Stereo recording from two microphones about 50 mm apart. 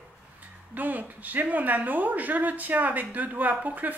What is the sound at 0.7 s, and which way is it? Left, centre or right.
Speech, right.